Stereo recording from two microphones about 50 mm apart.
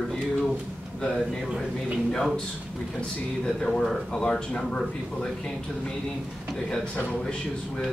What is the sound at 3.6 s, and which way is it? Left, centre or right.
Speech, centre.